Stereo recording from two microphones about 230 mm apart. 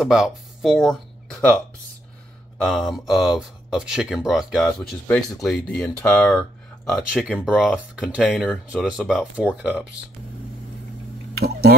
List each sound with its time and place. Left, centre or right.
0.0 s speech: centre
2.6 s speech: centre
11.3 s speech: right